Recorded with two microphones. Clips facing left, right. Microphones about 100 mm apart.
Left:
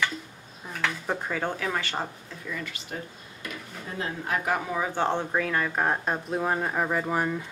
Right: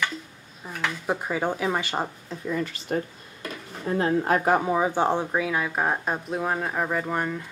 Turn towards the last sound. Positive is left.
turn(degrees=5)  # may be behind; listen again after turning